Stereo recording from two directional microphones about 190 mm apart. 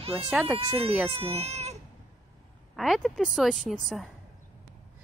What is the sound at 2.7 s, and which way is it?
Speech, centre (ahead or behind).